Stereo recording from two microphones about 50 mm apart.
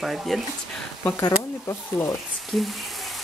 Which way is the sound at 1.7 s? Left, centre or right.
Left.